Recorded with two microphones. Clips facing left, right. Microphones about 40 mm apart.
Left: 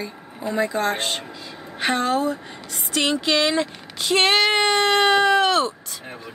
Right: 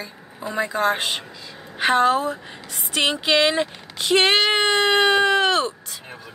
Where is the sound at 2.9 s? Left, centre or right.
Right.